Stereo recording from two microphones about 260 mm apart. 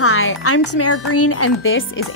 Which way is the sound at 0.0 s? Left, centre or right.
Left.